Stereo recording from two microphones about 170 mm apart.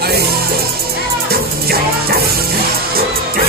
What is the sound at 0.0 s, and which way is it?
Music, 65° right (ahead or behind).